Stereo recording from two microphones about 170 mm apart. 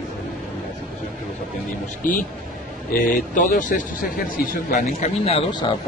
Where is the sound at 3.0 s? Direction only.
50° left (ahead or behind).